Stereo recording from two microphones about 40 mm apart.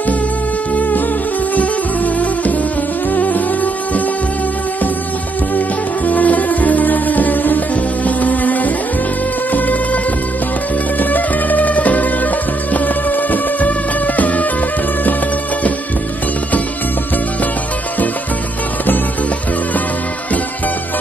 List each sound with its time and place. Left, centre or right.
0.7 s music: left
6.0 s music: left
11.0 s music: left